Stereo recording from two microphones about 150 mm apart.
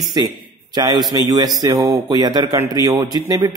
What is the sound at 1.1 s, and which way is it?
A man's voice, 25° right (ahead or behind).